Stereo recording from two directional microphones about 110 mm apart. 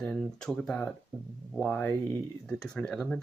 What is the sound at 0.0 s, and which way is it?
Speech, 5° left (ahead or behind).